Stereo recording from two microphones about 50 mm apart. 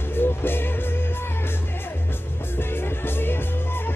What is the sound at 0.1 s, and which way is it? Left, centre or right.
Music, left.